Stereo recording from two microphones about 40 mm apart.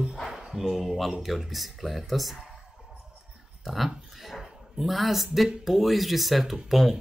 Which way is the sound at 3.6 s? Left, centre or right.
Centre.